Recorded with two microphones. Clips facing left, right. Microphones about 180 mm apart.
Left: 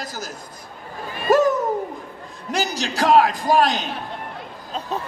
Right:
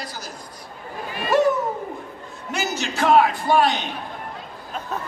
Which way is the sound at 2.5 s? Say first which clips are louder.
Left 2 dB; 35° left (ahead or behind).